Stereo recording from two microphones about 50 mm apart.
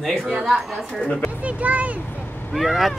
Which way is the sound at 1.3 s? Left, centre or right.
Right.